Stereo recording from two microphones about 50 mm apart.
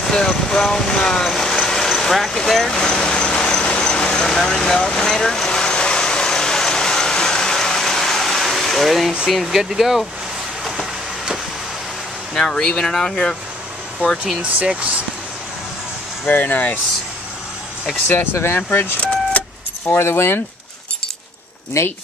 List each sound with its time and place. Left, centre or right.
0.0 s speech: centre
1.3 s vehicle: centre
9.3 s speech: centre
12.4 s speech: centre
14.2 s speech: right
16.3 s speech: left
18.3 s speech: left
20.0 s speech: left
21.8 s speech: left